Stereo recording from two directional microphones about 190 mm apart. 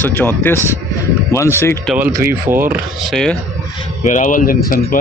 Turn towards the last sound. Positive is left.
turn(degrees=45)  # may be behind; listen again after turning